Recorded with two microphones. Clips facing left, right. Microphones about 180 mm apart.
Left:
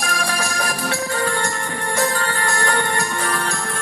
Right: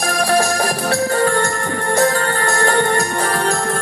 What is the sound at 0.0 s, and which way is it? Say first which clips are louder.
Music: right 8 dB; 40° right (ahead or behind).